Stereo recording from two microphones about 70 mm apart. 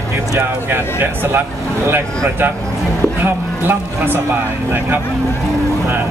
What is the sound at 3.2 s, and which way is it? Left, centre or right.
Speech, right.